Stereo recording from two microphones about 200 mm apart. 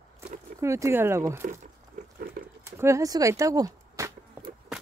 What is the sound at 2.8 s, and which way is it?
Speech, 15° right (ahead or behind).